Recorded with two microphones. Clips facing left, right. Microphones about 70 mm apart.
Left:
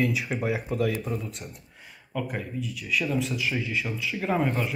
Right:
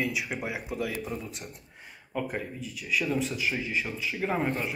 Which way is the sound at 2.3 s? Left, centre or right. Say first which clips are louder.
Left 2 dB; centre.